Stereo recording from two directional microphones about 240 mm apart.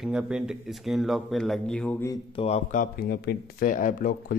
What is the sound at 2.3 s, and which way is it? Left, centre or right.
Speech, left.